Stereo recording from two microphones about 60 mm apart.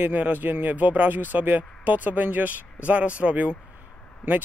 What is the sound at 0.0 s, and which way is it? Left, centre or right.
Speech, right.